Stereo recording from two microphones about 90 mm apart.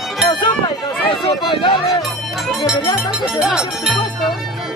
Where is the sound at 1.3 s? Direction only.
65° left (ahead or behind).